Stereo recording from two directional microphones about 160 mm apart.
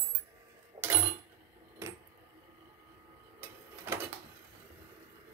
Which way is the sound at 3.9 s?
15° right (ahead or behind).